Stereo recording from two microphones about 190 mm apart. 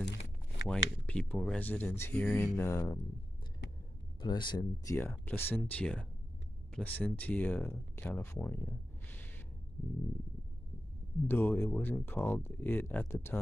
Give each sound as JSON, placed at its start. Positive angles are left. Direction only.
{"t": 0.0, "sound": "a sound", "side_deg": 65}
{"t": 1.0, "sound": "speech", "side_deg": 5}
{"t": 4.2, "sound": "speech", "side_deg": 25}
{"t": 11.2, "sound": "speech", "side_deg": 10}